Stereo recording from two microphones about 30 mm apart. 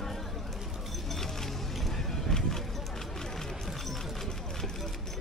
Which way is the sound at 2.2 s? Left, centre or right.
Centre.